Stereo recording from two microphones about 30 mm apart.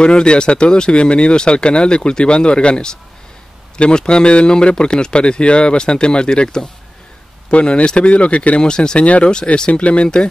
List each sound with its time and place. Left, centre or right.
0.0 s speech: left
7.5 s speech: left
8.5 s speech: left
9.7 s speech: left